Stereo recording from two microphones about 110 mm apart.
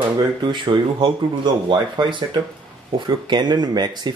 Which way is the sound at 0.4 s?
50° right (ahead or behind).